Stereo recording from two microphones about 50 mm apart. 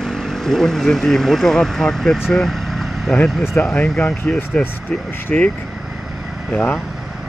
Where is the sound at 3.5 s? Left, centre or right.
Left.